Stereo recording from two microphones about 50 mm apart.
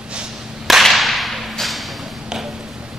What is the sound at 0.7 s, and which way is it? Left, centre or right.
Whip, centre.